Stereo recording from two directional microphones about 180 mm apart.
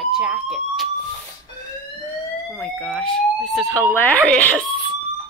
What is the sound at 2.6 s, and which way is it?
Speech, 5° left (ahead or behind).